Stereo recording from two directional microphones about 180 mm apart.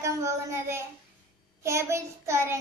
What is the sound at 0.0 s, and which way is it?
A woman's voice, 15° right (ahead or behind).